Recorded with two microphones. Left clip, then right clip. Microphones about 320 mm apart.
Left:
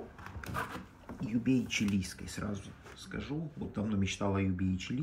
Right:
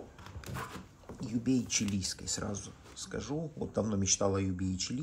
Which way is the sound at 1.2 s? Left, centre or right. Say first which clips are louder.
Left 1 dB; centre.